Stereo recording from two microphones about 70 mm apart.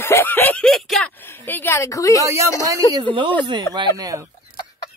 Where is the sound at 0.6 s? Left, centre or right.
Centre.